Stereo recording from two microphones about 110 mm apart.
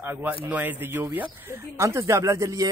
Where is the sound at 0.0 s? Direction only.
20° right (ahead or behind).